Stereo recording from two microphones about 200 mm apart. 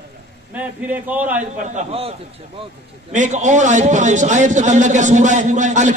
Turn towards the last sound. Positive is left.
turn(degrees=-35)  # may be behind; listen again after turning